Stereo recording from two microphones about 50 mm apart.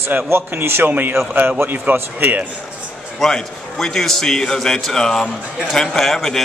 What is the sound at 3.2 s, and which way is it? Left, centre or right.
A man's voice, centre.